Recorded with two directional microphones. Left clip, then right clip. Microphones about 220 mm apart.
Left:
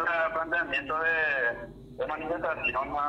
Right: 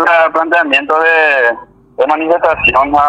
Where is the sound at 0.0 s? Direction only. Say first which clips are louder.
Right 18 dB; 50° right (ahead or behind).